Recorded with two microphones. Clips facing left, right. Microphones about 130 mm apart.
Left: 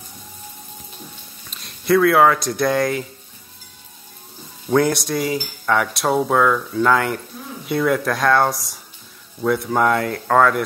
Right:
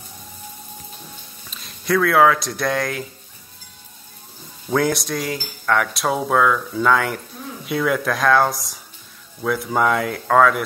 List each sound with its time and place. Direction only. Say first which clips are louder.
1.5 s speech: left 4 dB; centre (ahead or behind)
4.6 s speech: left 2 dB; centre (ahead or behind)